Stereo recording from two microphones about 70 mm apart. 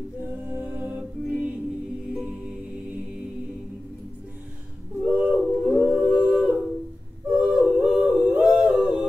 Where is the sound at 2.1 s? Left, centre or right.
Centre.